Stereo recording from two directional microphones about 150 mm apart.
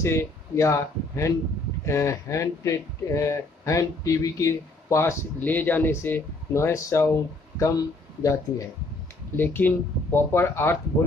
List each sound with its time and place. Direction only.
0.0 s speech: 20° left (ahead or behind)
9.4 s speech: 15° left (ahead or behind)